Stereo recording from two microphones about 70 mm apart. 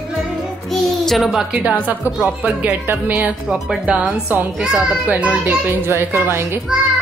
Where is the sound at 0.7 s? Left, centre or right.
Centre.